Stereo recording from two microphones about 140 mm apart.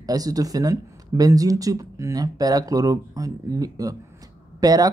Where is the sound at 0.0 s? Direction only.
25° right (ahead or behind).